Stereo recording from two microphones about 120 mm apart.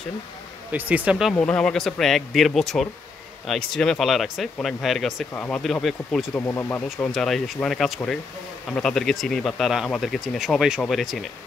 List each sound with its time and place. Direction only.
0.7 s speech: 15° right (ahead or behind)
1.3 s speech: 10° left (ahead or behind)
5.3 s speech: 15° left (ahead or behind)
5.6 s speech: centre (ahead or behind)
6.3 s speech: 15° left (ahead or behind)
7.1 s speech: centre (ahead or behind)